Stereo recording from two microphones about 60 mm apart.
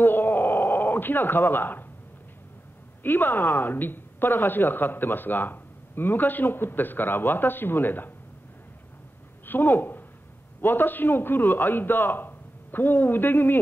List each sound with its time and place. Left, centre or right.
0.0 s a sound: left
3.0 s a woman's voice: left
9.5 s a man's voice: left